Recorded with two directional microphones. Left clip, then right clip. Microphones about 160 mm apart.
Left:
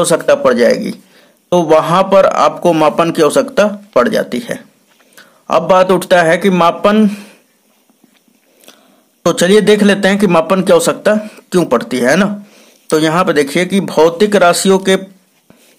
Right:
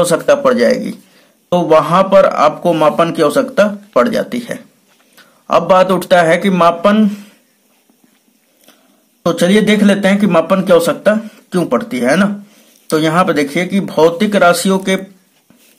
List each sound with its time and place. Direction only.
0.0 s a man's voice: 30° left (ahead or behind)
9.2 s a man's voice: 40° left (ahead or behind)